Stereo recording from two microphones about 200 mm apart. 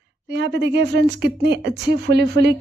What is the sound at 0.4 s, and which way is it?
Speech, 60° right (ahead or behind).